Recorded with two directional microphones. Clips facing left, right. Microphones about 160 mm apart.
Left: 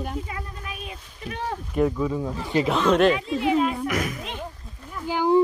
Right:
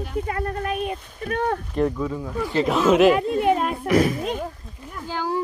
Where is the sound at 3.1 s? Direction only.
55° right (ahead or behind).